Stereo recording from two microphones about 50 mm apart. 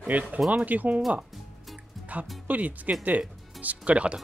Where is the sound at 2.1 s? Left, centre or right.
Right.